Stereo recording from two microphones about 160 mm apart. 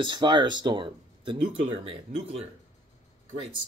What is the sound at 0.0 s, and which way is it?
Speech, 30° right (ahead or behind).